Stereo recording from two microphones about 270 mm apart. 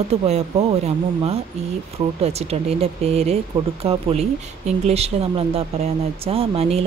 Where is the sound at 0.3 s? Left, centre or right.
Right.